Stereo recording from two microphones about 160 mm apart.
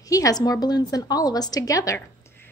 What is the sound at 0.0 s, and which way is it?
A woman's voice, 20° left (ahead or behind).